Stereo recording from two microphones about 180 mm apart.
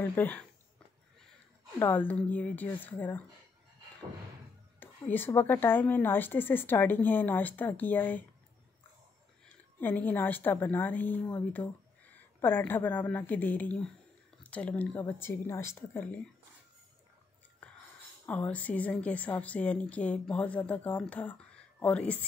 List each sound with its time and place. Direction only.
0.0 s a woman's voice: 10° left (ahead or behind)
1.8 s a woman's voice: 10° left (ahead or behind)
4.7 s a woman's voice: 10° left (ahead or behind)
9.8 s a woman's voice: 10° left (ahead or behind)
18.2 s a woman's voice: 10° left (ahead or behind)